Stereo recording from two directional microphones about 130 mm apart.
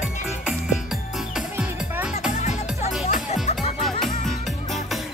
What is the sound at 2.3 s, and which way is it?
Music, 65° left (ahead or behind).